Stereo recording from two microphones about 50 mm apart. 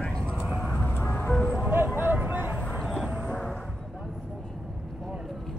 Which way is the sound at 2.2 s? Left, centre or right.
Right.